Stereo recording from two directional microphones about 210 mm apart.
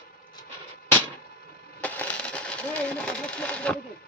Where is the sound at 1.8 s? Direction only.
5° left (ahead or behind).